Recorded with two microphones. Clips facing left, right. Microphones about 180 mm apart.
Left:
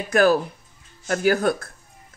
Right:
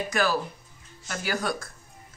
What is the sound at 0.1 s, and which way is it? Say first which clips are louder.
Speech: left 11 dB; 50° left (ahead or behind).